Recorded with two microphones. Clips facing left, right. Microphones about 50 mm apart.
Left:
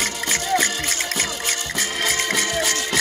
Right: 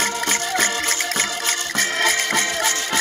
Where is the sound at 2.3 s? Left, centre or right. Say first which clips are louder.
Right 1 dB; right.